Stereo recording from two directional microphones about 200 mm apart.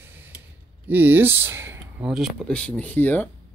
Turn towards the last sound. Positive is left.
turn(degrees=10)  # may be behind; listen again after turning